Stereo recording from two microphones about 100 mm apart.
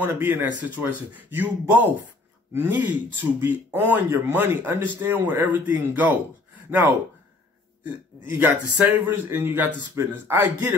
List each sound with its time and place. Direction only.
0.0 s a man's voice: 20° right (ahead or behind)
8.3 s a man's voice: 20° right (ahead or behind)